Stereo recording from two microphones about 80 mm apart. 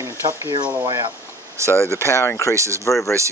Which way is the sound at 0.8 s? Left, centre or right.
Right.